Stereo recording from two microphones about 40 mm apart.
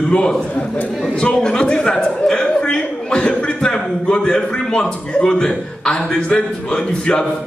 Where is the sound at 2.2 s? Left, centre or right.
Centre.